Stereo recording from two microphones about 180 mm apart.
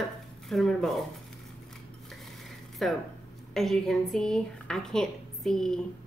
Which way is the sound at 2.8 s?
Centre (ahead or behind).